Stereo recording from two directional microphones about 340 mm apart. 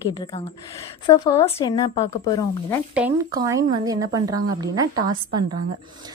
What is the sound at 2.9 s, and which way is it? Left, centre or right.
Speech, centre.